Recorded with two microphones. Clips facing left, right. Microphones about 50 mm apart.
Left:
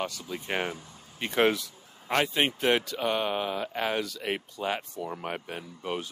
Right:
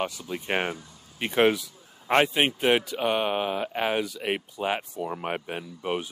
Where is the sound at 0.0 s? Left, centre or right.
Centre.